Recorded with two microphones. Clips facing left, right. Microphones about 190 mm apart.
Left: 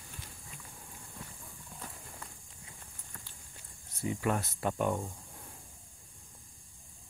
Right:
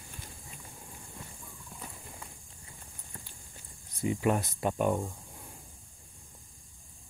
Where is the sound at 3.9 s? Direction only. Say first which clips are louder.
Right 4 dB; 20° right (ahead or behind).